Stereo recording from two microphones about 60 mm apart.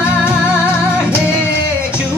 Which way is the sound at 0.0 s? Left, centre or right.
Centre.